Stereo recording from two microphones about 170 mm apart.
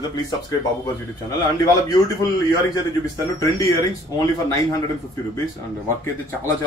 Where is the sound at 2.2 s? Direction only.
20° left (ahead or behind).